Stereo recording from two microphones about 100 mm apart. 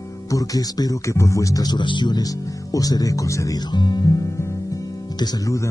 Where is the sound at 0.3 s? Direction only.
35° left (ahead or behind).